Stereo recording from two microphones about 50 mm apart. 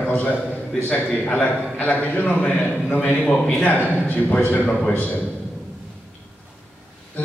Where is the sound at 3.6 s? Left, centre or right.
Left.